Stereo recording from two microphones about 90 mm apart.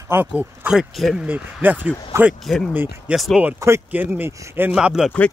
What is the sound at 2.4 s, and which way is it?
Speech, 5° left (ahead or behind).